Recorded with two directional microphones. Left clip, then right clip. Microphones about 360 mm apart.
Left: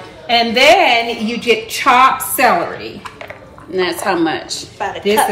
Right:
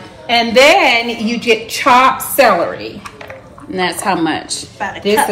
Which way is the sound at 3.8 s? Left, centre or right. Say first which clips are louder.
Even; centre.